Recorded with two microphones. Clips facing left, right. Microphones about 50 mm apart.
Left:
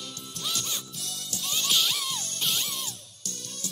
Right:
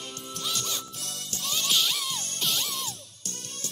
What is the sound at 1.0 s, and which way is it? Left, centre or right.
Music, right.